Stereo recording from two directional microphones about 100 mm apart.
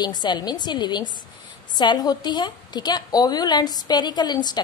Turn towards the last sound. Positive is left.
turn(degrees=45)  # may be behind; listen again after turning